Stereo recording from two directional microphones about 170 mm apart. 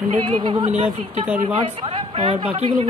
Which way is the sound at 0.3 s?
30° right (ahead or behind).